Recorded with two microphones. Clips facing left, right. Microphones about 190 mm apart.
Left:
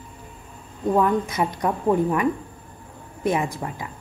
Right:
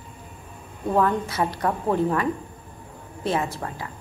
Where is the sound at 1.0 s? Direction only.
15° left (ahead or behind).